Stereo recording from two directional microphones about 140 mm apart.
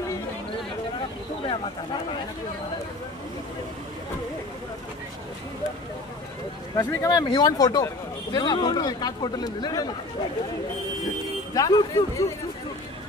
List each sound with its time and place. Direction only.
1.4 s speech: 40° left (ahead or behind)
6.9 s speech: 25° left (ahead or behind)
11.5 s speech: 25° left (ahead or behind)